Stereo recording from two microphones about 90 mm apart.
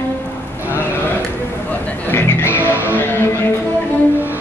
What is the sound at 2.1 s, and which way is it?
Speech, 25° left (ahead or behind).